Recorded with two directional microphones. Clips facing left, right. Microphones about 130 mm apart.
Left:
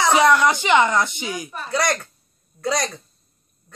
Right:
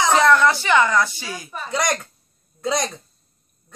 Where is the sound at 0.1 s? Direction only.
15° left (ahead or behind).